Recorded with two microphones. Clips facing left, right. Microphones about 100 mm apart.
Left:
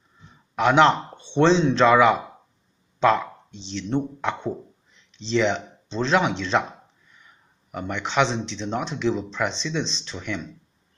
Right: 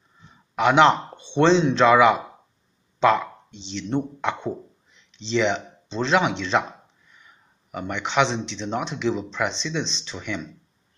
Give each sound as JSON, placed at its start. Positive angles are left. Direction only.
{"t": 0.6, "sound": "speech", "side_deg": -5}